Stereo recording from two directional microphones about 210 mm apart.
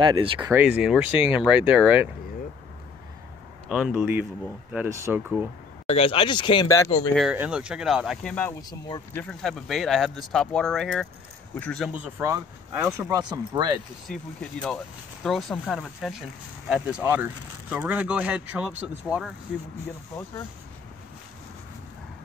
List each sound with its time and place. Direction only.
0.0 s speech: 25° right (ahead or behind)
0.4 s speech: 10° right (ahead or behind)
3.6 s speech: centre (ahead or behind)
5.9 s speech: 25° left (ahead or behind)
7.2 s speech: 5° right (ahead or behind)
8.5 s speech: 20° left (ahead or behind)
9.2 s speech: 5° left (ahead or behind); by 13.7 s 20° right (ahead or behind)
14.0 s speech: 5° left (ahead or behind)